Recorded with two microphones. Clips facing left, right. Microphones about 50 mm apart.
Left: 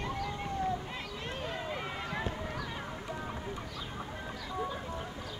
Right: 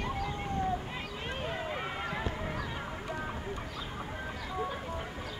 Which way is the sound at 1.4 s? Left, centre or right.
Right.